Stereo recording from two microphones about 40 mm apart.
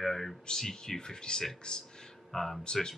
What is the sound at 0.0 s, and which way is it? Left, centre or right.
Speech, centre.